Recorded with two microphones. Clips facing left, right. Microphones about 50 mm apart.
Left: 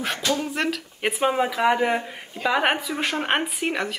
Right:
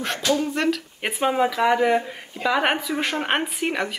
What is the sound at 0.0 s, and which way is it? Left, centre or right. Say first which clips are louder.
Speech: right 2 dB; centre.